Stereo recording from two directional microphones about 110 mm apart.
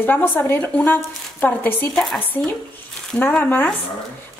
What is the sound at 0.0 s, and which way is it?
A woman's voice, 15° left (ahead or behind).